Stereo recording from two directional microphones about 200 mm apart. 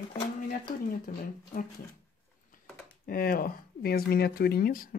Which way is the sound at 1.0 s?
45° left (ahead or behind).